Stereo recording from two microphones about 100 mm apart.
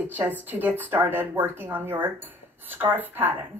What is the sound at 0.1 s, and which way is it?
A woman's voice, 15° right (ahead or behind).